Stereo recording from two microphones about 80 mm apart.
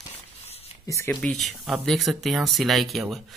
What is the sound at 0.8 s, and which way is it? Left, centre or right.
Speech, left.